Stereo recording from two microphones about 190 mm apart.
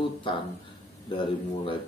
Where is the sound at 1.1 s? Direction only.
25° left (ahead or behind).